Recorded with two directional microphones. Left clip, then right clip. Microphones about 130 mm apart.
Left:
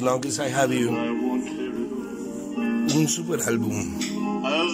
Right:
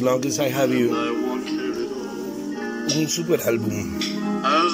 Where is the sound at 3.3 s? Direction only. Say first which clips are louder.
Right 6 dB; 10° left (ahead or behind).